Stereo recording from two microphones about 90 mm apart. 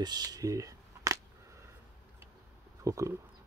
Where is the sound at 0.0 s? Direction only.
50° right (ahead or behind).